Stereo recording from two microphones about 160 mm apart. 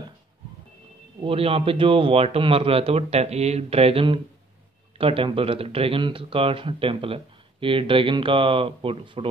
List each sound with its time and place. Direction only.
1.2 s speech: 35° right (ahead or behind)